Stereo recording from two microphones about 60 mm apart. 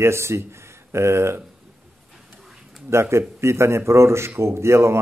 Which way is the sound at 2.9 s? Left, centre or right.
Right.